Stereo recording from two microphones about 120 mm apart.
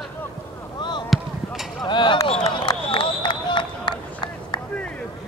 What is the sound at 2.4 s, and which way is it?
Run, 40° left (ahead or behind).